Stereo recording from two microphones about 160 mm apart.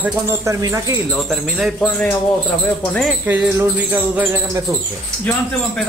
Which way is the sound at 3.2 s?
10° right (ahead or behind).